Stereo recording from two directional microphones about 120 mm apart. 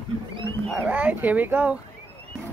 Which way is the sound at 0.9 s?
15° right (ahead or behind).